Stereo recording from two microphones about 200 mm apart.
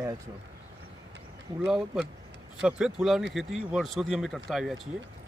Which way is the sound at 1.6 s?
Centre (ahead or behind).